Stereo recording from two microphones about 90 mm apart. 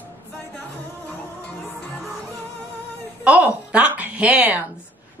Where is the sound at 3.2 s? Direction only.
15° right (ahead or behind).